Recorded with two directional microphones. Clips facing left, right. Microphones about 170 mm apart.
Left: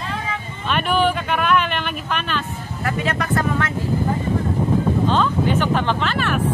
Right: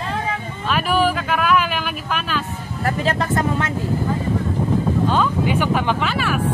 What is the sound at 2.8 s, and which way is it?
Speech, 35° right (ahead or behind).